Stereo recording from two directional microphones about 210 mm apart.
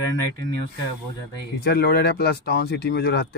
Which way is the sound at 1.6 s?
50° left (ahead or behind).